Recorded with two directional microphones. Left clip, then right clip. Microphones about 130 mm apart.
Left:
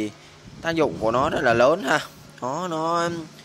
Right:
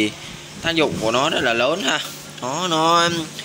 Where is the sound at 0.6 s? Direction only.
45° left (ahead or behind).